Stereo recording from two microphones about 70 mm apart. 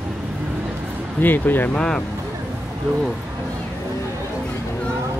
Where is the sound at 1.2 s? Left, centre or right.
Left.